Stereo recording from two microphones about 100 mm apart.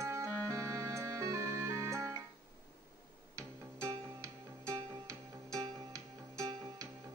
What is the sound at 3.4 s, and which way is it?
Music, 30° right (ahead or behind).